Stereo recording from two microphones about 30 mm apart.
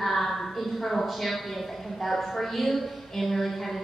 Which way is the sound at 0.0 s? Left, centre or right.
Centre.